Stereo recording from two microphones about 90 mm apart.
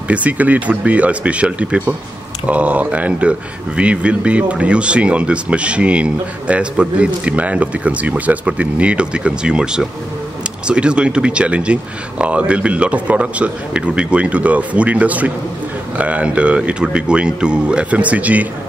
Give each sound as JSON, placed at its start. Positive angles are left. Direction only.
{"t": 0.1, "sound": "a man's voice", "side_deg": -15}